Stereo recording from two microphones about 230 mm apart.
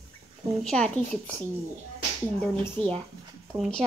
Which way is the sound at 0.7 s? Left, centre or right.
Centre.